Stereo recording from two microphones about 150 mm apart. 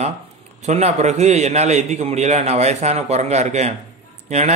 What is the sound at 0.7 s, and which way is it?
Speech, 50° right (ahead or behind).